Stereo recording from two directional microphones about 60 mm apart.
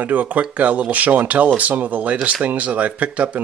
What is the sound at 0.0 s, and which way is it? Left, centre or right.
Speech, right.